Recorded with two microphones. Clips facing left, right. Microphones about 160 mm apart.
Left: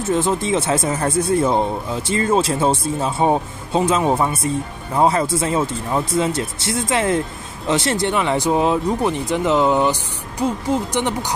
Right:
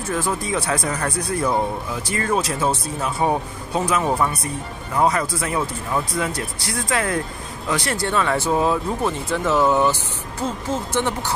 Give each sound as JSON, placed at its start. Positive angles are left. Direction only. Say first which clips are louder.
{"t": 0.0, "sound": "speech", "louder": "left 5 dB", "side_deg": 25}